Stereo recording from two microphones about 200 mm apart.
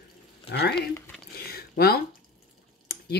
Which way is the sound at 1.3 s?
50° left (ahead or behind).